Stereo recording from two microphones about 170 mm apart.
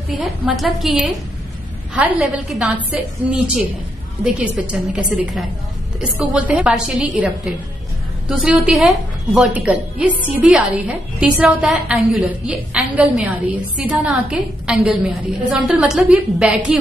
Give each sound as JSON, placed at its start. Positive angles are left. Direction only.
{"t": 0.2, "sound": "a woman's voice", "side_deg": 0}
{"t": 2.0, "sound": "a woman's voice", "side_deg": -10}
{"t": 8.3, "sound": "a woman's voice", "side_deg": -5}